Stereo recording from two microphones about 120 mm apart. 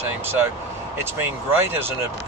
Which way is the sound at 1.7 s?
20° right (ahead or behind).